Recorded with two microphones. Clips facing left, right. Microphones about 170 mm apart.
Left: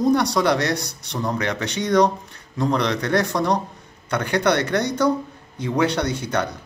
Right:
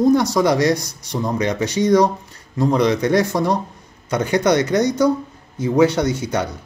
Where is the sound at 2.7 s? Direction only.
10° right (ahead or behind).